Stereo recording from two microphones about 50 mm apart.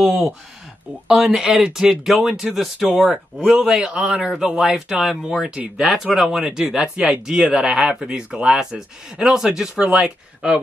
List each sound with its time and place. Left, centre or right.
0.0 s speech: centre
6.4 s speech: centre